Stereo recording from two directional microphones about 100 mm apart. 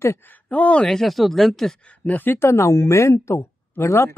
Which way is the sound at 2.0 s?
20° left (ahead or behind).